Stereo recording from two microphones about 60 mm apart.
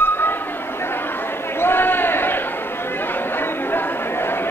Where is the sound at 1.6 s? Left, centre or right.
Left.